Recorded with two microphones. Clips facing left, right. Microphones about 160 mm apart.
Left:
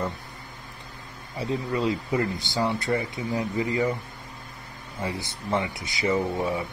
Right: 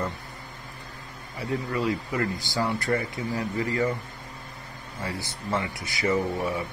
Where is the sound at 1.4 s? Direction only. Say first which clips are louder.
Left 1 dB; 20° left (ahead or behind).